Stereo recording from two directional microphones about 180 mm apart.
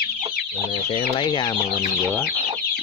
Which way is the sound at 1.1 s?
25° left (ahead or behind).